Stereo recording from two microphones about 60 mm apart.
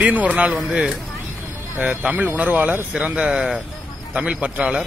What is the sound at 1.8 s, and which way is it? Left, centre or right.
Speech, right.